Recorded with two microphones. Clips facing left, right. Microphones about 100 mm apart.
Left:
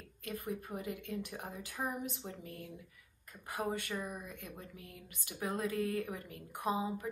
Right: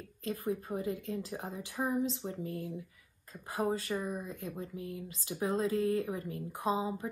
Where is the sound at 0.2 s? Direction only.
25° right (ahead or behind).